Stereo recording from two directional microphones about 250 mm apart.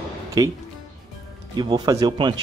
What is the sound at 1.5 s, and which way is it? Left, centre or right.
Speech, centre.